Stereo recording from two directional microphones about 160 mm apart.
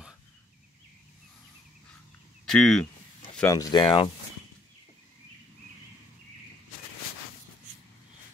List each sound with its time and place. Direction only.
2.4 s speech: 5° left (ahead or behind)
3.4 s speech: 20° left (ahead or behind)
3.8 s speech: 35° left (ahead or behind)